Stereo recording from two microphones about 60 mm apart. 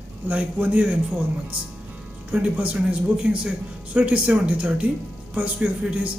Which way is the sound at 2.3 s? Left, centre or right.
Right.